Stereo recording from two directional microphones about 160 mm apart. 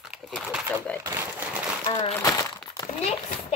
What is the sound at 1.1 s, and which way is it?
Speech, 15° right (ahead or behind).